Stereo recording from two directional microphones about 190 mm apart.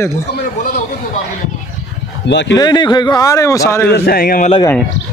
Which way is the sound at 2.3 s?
70° left (ahead or behind).